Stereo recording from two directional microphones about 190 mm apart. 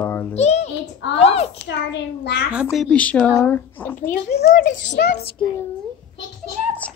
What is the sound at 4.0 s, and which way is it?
A woman's voice, 45° left (ahead or behind).